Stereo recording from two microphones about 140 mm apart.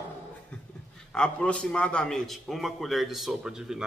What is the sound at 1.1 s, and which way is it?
A man's voice, 5° left (ahead or behind).